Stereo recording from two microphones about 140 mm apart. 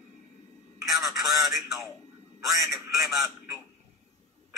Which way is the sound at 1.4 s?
Centre (ahead or behind).